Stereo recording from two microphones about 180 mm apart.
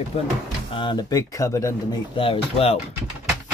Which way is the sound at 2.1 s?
30° left (ahead or behind).